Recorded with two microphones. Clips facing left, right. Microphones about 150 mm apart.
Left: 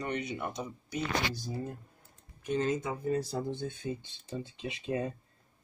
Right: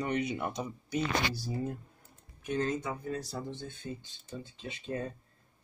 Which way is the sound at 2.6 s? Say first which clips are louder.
Left 1 dB; 20° left (ahead or behind).